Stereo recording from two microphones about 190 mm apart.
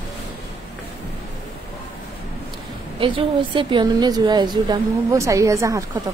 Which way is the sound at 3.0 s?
25° right (ahead or behind).